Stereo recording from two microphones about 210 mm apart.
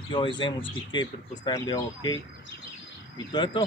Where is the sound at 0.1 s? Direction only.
25° left (ahead or behind).